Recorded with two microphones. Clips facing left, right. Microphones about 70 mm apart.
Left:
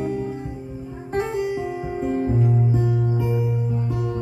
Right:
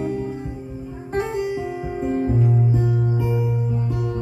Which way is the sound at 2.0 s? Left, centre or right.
Centre.